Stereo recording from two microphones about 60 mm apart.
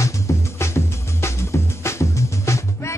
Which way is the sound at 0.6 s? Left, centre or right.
Left.